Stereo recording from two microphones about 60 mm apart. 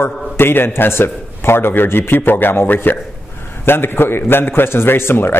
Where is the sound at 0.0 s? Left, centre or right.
Left.